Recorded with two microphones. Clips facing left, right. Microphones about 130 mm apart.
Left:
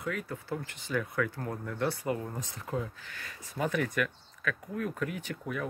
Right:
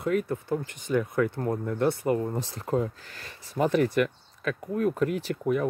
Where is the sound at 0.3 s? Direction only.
20° right (ahead or behind).